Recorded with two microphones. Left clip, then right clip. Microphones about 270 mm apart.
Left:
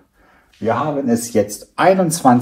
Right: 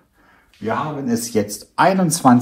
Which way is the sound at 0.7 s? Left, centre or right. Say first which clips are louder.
Left 4 dB; centre.